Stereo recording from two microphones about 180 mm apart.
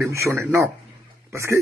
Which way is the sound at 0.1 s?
10° right (ahead or behind).